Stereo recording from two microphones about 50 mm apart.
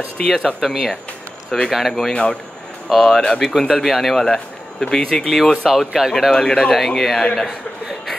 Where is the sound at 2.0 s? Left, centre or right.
Centre.